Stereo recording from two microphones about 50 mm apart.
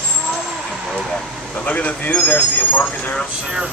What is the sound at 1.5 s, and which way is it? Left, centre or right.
Speech, left.